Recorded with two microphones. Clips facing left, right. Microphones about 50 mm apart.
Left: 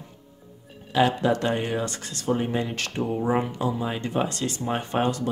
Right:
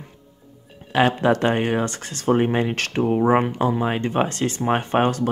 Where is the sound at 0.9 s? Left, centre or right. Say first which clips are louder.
Right 3 dB; right.